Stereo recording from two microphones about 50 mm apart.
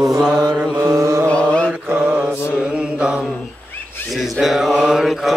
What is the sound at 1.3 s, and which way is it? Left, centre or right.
Mantra, left.